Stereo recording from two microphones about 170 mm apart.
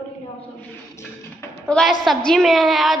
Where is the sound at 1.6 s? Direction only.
5° left (ahead or behind).